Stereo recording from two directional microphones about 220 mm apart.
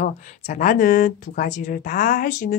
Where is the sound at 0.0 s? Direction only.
35° left (ahead or behind).